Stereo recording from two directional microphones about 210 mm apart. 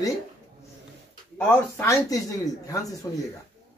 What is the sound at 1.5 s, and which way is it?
Speech, 10° left (ahead or behind).